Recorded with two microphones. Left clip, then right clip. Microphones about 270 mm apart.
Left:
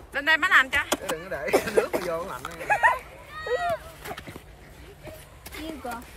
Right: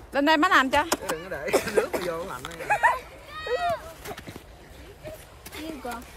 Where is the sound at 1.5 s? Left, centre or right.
Left.